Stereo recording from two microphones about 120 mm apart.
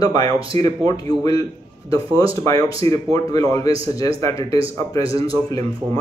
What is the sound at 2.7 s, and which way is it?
Speech, 30° left (ahead or behind).